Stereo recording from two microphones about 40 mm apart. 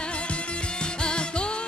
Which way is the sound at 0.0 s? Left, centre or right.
Left.